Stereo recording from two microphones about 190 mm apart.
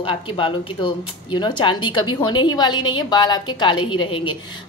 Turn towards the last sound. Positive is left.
turn(degrees=25)  # may be behind; listen again after turning